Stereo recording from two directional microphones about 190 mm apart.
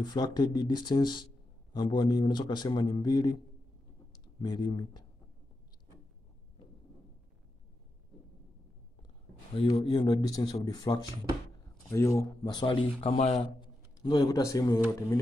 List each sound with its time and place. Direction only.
0.0 s speech: 20° left (ahead or behind)
4.4 s speech: 20° left (ahead or behind)
9.6 s a man's voice: 30° left (ahead or behind)